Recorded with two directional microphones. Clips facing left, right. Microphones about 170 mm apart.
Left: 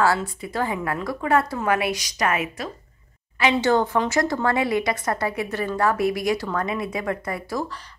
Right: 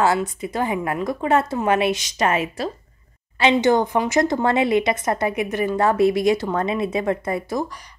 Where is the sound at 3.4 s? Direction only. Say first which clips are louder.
Right 3 dB; 20° right (ahead or behind).